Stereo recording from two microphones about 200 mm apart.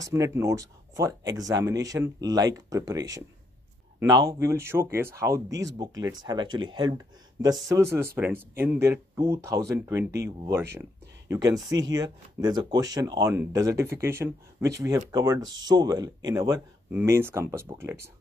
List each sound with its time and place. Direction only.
0.0 s speech: 15° right (ahead or behind)